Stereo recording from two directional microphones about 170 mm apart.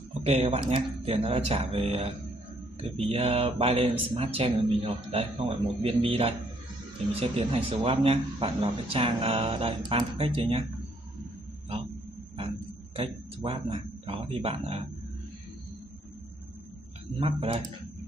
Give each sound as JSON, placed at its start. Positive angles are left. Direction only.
{"t": 0.2, "sound": "speech", "side_deg": -35}
{"t": 12.9, "sound": "speech", "side_deg": -30}
{"t": 17.2, "sound": "speech", "side_deg": -35}